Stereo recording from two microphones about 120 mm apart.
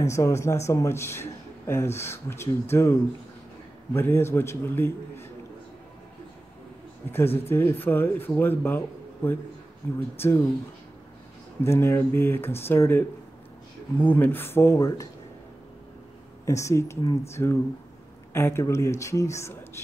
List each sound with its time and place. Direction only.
0.0 s a man's voice: 25° left (ahead or behind)
7.1 s a man's voice: 20° left (ahead or behind)
11.6 s a man's voice: 20° left (ahead or behind)
16.4 s a man's voice: 25° left (ahead or behind)